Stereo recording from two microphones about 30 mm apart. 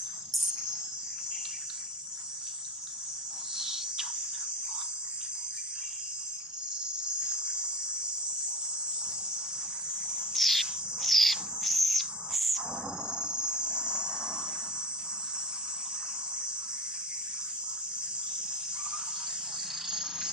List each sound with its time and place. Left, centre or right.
0.3 s cricket: centre
3.5 s cricket: centre
7.2 s cricket: right
10.3 s bird: centre
13.0 s cricket: right
19.9 s a sound: centre